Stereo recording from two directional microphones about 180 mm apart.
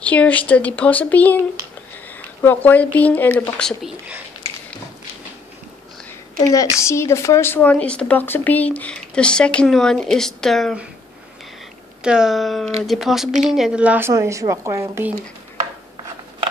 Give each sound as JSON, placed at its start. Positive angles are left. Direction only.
{"t": 0.0, "sound": "speech", "side_deg": 10}
{"t": 6.5, "sound": "speech", "side_deg": 15}
{"t": 12.0, "sound": "speech", "side_deg": -5}